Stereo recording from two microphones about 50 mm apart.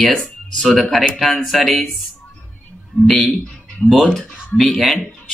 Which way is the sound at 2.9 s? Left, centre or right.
Left.